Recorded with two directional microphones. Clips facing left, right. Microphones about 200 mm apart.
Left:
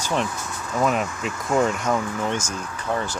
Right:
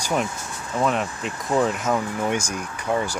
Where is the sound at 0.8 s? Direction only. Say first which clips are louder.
Left 1 dB; centre (ahead or behind).